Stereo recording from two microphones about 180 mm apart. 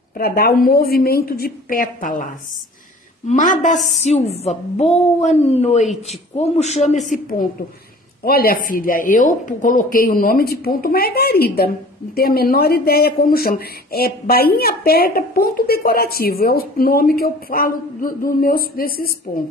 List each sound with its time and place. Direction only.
0.2 s speech: 55° left (ahead or behind)
3.3 s speech: 45° left (ahead or behind)
3.7 s speech: centre (ahead or behind)
4.0 s a woman's voice: 35° left (ahead or behind)
7.1 s speech: 50° left (ahead or behind)